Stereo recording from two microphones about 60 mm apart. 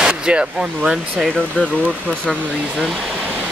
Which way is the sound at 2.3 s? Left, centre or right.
Right.